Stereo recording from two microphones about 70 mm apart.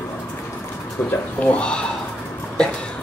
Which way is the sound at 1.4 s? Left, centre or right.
Centre.